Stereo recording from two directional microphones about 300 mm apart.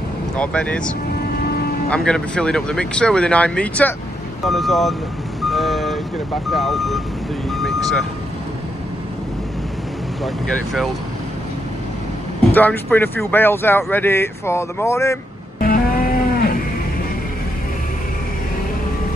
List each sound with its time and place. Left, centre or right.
0.4 s speech: centre
1.9 s speech: centre
5.4 s vehicle: centre
6.5 s speech: centre
7.4 s vehicle: centre
10.2 s speech: centre
12.5 s speech: centre
15.6 s music: left